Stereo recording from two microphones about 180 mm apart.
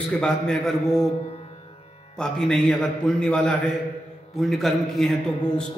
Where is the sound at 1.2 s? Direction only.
35° left (ahead or behind).